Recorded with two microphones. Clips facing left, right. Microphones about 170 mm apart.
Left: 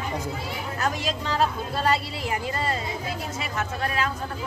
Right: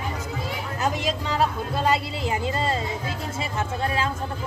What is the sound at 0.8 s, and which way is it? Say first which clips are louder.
Speech: right 2 dB; 20° right (ahead or behind).